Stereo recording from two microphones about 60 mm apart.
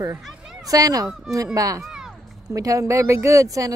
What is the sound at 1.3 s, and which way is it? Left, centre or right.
Speech, right.